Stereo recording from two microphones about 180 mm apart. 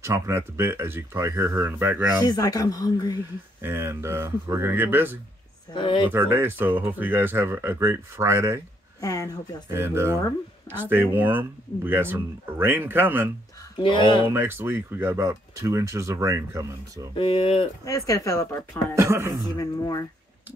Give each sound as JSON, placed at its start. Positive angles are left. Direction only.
{"t": 0.0, "sound": "speech", "side_deg": -15}
{"t": 2.2, "sound": "speech", "side_deg": 20}
{"t": 3.6, "sound": "speech", "side_deg": -15}
{"t": 5.7, "sound": "speech", "side_deg": 30}
{"t": 6.0, "sound": "speech", "side_deg": -10}
{"t": 9.0, "sound": "speech", "side_deg": 20}
{"t": 9.7, "sound": "speech", "side_deg": -15}
{"t": 13.7, "sound": "speech", "side_deg": 25}
{"t": 14.2, "sound": "speech", "side_deg": -10}
{"t": 17.1, "sound": "speech", "side_deg": 30}
{"t": 17.8, "sound": "speech", "side_deg": 15}
{"t": 18.9, "sound": "speech", "side_deg": -15}
{"t": 19.5, "sound": "speech", "side_deg": 20}